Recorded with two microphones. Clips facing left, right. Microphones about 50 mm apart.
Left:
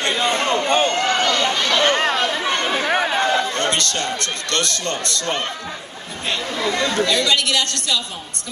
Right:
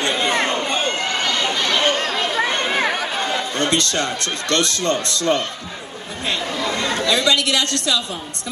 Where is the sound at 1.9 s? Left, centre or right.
Centre.